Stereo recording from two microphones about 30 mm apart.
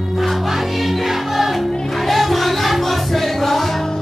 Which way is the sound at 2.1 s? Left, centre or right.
Centre.